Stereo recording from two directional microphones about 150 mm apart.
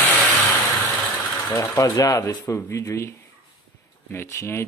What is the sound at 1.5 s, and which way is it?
Speech, 20° left (ahead or behind).